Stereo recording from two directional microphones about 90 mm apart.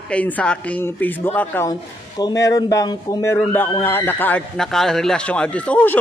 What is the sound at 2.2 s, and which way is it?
Speech, 40° left (ahead or behind).